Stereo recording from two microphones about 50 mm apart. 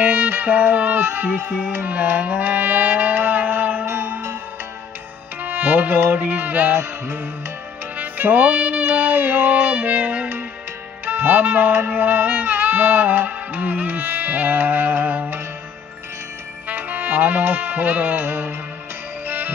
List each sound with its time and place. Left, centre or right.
0.0 s music: right
3.8 s music: right
5.4 s music: right
8.0 s music: right
16.6 s music: right